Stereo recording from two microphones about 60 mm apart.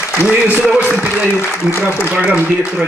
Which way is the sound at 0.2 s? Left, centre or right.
Left.